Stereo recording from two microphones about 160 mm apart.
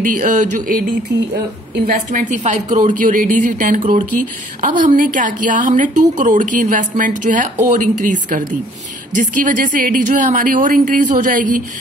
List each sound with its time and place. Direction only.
0.0 s a woman's voice: 55° right (ahead or behind)
2.0 s a woman's voice: 50° right (ahead or behind)